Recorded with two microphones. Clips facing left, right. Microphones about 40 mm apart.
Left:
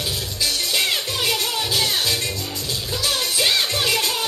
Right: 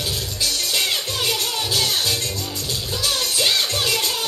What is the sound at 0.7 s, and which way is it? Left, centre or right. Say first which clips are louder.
Music: left 1 dB; centre.